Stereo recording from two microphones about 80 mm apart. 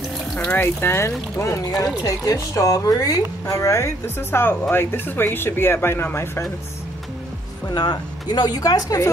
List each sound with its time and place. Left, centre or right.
0.4 s a woman's voice: left
1.4 s a woman's voice: left
7.6 s speech: left